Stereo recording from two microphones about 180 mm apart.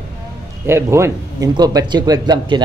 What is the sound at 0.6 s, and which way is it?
Speech, 15° right (ahead or behind).